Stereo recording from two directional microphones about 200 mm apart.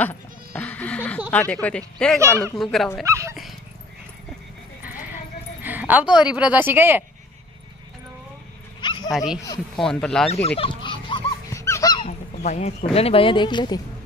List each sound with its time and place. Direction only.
0.0 s speech: 10° left (ahead or behind)
2.1 s speech: 15° right (ahead or behind)
2.5 s speech: centre (ahead or behind)
3.1 s speech: 15° right (ahead or behind)
5.6 s a sound: 10° right (ahead or behind)
6.2 s speech: 5° right (ahead or behind)
9.1 s speech: 5° right (ahead or behind)
10.6 s dog: 25° left (ahead or behind)
12.1 s speech: 35° left (ahead or behind)